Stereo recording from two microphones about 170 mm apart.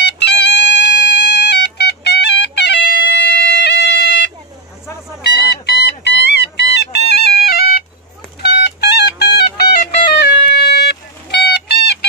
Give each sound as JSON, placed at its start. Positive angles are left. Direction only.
{"t": 0.0, "sound": "music", "side_deg": 90}